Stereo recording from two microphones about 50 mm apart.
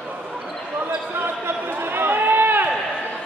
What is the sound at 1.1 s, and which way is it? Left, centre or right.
Run, right.